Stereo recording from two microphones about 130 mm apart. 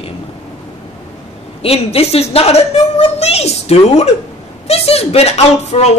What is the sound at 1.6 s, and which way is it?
Speech, 50° left (ahead or behind).